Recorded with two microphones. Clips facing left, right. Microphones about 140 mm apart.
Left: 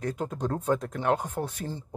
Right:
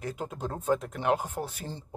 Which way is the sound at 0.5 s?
25° right (ahead or behind).